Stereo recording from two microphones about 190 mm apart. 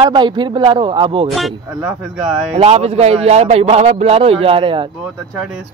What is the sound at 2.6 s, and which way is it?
A man's voice, 35° right (ahead or behind).